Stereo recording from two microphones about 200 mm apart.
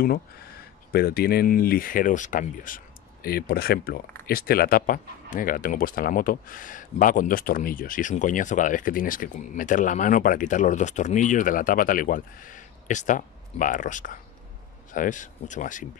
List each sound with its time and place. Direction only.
0.9 s speech: 50° left (ahead or behind)